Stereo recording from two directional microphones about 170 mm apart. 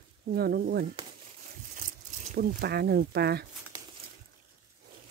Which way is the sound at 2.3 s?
70° right (ahead or behind).